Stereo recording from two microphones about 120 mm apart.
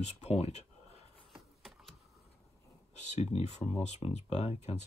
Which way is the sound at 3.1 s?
60° left (ahead or behind).